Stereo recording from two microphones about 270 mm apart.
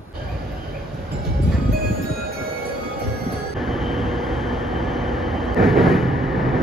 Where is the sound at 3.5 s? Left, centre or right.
Centre.